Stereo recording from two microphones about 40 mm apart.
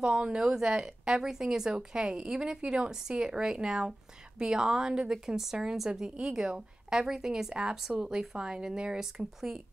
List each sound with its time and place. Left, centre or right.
0.0 s a woman's voice: right; by 8.4 s centre
8.4 s speech: right